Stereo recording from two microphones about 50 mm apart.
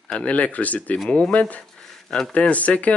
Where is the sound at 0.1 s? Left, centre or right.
Left.